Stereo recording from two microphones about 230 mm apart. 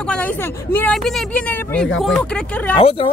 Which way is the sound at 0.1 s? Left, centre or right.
Centre.